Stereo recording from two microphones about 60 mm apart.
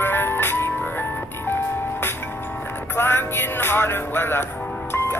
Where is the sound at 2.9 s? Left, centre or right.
Left.